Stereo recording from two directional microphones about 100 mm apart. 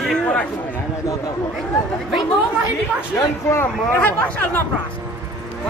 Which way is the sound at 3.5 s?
20° left (ahead or behind).